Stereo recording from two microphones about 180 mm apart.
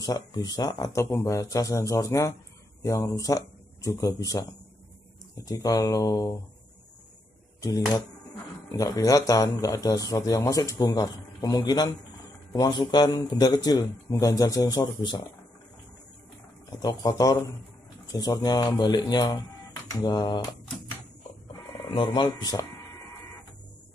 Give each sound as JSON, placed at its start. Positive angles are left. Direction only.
{"t": 0.0, "sound": "speech", "side_deg": 20}
{"t": 8.7, "sound": "speech", "side_deg": 20}
{"t": 17.0, "sound": "speech", "side_deg": 20}
{"t": 21.9, "sound": "speech", "side_deg": 25}